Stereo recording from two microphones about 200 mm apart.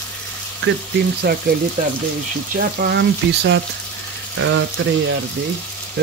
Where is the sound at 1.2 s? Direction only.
55° right (ahead or behind).